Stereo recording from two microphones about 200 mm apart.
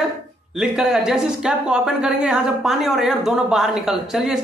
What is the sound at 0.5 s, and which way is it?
Speech, 5° right (ahead or behind).